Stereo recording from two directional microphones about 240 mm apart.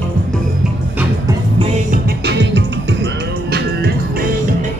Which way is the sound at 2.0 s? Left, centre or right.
Right.